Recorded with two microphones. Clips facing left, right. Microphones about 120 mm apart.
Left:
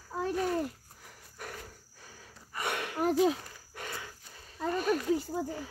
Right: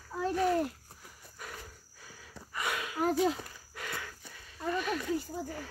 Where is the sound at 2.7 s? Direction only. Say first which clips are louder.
Left 1 dB; 55° left (ahead or behind).